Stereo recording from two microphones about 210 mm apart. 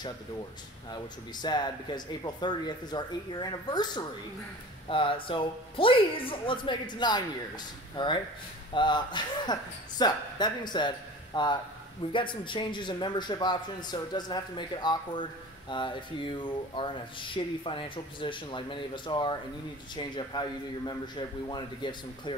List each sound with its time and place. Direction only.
0.9 s speech: 20° left (ahead or behind)